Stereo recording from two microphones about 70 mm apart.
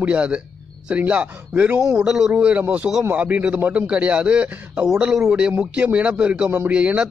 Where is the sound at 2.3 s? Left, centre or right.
Right.